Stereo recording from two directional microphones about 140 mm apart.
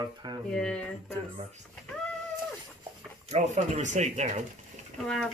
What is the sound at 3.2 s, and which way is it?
Speech, 55° right (ahead or behind).